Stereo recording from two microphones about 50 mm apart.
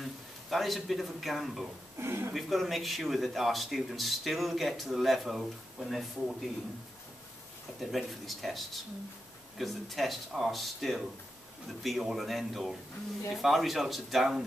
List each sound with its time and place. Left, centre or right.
0.0 s speech: centre
2.0 s speech: right
2.3 s speech: centre
7.8 s speech: centre